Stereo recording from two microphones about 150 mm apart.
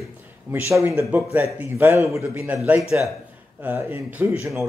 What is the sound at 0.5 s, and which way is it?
A man's voice, 20° right (ahead or behind).